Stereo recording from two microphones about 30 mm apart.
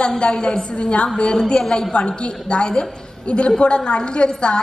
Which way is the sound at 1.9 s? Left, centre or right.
Left.